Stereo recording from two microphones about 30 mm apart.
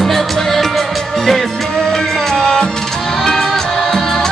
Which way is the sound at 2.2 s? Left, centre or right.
Centre.